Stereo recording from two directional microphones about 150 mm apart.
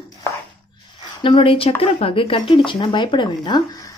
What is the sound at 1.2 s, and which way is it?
Speech, 35° left (ahead or behind).